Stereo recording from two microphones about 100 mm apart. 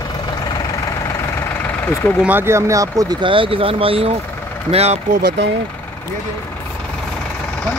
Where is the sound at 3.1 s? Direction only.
60° right (ahead or behind).